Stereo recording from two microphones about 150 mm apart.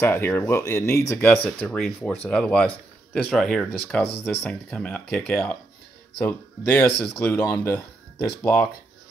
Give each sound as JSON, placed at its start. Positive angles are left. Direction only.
{"t": 0.0, "sound": "speech", "side_deg": 15}